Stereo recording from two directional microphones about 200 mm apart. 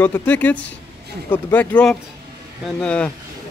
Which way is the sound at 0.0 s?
10° left (ahead or behind).